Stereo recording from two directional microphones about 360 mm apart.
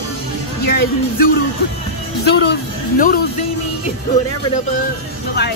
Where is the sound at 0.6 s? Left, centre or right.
Left.